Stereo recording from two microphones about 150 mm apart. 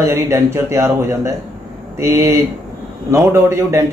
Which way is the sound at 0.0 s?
20° right (ahead or behind).